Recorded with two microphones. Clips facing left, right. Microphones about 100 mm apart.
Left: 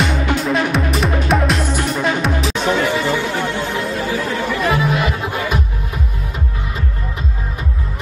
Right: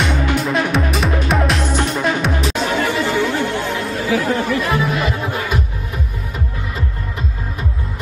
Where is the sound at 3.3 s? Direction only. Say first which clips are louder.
Right 1 dB; 20° left (ahead or behind).